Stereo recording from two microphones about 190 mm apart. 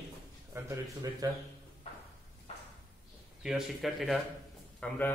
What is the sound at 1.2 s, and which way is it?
Speech, 20° right (ahead or behind).